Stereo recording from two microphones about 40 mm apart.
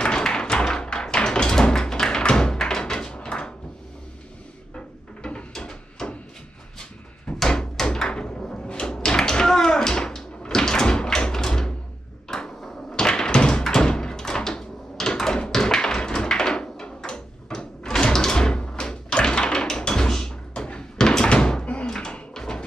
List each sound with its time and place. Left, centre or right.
0.1 s tap: centre
4.7 s a sound: left
6.8 s door: centre
12.3 s thump: centre
17.6 s door: centre
21.8 s drawer open or close: centre
22.3 s a sound: centre